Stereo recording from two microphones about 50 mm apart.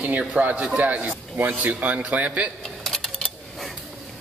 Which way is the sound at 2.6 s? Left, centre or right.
Centre.